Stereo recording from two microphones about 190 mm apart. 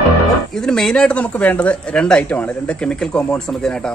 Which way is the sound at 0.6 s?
5° left (ahead or behind).